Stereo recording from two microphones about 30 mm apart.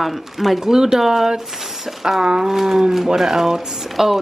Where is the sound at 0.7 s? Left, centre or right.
Centre.